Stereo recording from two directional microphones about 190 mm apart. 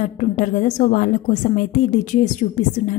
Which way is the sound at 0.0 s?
45° left (ahead or behind).